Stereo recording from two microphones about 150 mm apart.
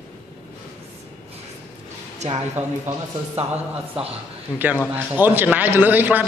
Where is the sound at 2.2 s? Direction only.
50° right (ahead or behind).